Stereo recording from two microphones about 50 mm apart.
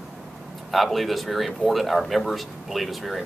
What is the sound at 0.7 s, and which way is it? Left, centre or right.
Speech, centre.